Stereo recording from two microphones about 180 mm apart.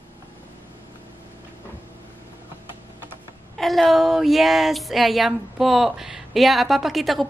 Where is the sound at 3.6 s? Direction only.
Centre (ahead or behind).